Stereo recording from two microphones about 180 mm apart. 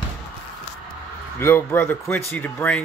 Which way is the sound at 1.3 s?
10° left (ahead or behind).